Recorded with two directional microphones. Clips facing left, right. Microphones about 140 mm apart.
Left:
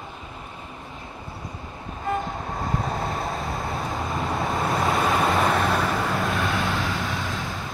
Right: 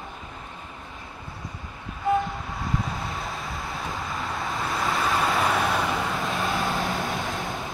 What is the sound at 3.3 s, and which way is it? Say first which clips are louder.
Vehicle: left 5 dB; 25° left (ahead or behind).